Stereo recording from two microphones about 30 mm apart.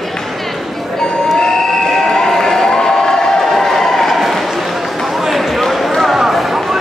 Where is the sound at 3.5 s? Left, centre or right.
Centre.